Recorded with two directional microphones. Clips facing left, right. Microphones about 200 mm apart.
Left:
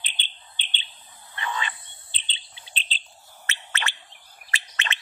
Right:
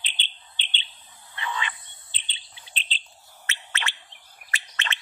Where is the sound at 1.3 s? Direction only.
45° left (ahead or behind).